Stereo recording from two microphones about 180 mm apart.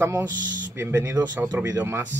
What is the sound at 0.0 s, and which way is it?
Speech, 10° right (ahead or behind).